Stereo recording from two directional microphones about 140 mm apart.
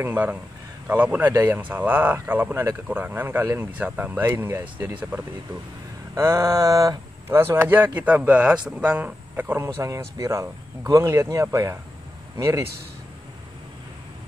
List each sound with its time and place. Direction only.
0.0 s speech: 15° right (ahead or behind)